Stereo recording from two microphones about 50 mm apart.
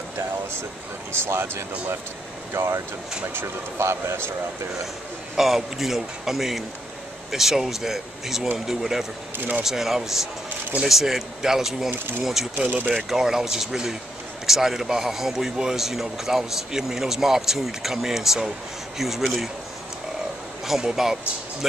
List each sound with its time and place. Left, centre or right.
1.1 s speech: right
5.3 s a man's voice: centre
12.5 s speech: right
12.9 s a man's voice: centre
20.6 s a man's voice: centre